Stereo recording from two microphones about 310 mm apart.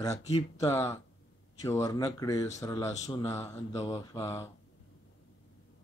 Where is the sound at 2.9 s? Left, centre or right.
Left.